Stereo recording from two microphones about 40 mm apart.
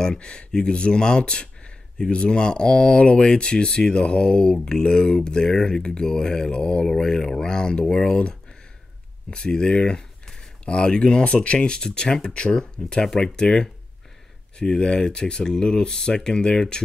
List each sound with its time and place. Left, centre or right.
0.0 s speech: left